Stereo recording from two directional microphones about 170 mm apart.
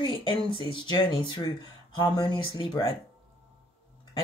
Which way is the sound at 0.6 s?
30° left (ahead or behind).